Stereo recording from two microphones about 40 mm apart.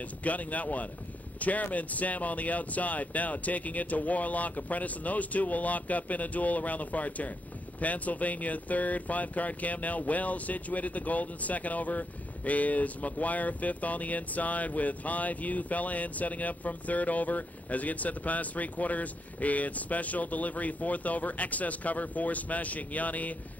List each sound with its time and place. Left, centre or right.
0.2 s speech: left